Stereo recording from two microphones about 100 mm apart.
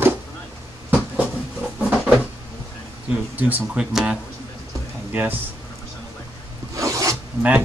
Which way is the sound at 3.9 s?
5° right (ahead or behind).